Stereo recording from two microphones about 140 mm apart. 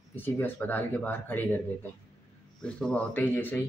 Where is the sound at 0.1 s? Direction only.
15° left (ahead or behind).